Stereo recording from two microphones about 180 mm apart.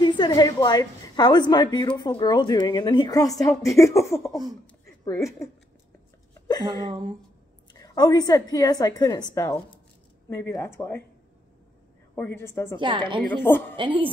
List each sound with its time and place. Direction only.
0.0 s a woman's voice: 25° left (ahead or behind)
6.9 s a woman's voice: 20° right (ahead or behind)
7.7 s a woman's voice: 20° left (ahead or behind)
12.2 s speech: 10° left (ahead or behind)
12.7 s a woman's voice: 25° right (ahead or behind)
13.4 s speech: 10° left (ahead or behind)
13.7 s a woman's voice: 30° right (ahead or behind)